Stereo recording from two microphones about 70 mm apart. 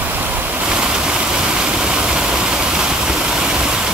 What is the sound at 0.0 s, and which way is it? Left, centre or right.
Waves, right.